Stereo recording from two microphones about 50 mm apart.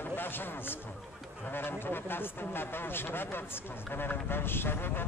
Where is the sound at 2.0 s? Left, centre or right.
Left.